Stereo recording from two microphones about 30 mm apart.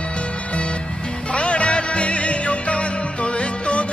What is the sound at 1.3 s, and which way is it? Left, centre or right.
Music, left.